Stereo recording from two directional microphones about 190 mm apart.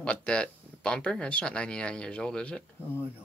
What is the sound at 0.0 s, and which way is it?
Speech, 5° left (ahead or behind).